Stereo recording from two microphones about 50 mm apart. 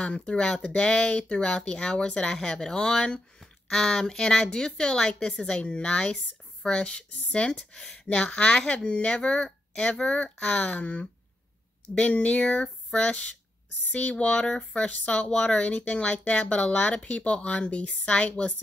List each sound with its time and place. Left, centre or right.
0.0 s speech: left
3.3 s speech: centre; by 18.5 s left